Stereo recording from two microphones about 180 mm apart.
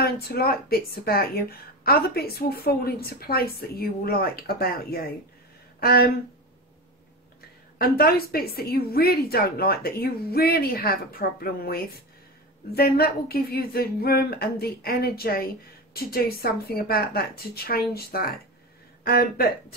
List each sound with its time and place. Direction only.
0.0 s speech: 60° left (ahead or behind)
7.8 s speech: 55° left (ahead or behind)